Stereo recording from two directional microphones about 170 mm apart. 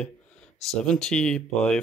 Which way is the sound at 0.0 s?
5° left (ahead or behind).